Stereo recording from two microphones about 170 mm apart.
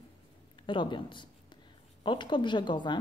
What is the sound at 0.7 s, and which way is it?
A woman's voice, 30° left (ahead or behind).